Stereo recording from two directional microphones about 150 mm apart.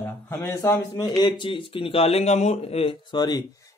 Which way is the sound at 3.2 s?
25° left (ahead or behind).